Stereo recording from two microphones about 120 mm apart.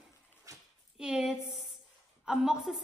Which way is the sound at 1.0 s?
5° right (ahead or behind).